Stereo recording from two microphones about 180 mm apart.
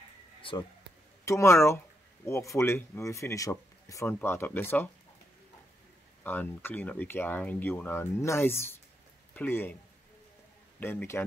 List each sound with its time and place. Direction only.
0.4 s a sound: 30° left (ahead or behind)
1.2 s speech: 15° left (ahead or behind)
6.2 s speech: 10° left (ahead or behind)
10.8 s speech: 10° left (ahead or behind)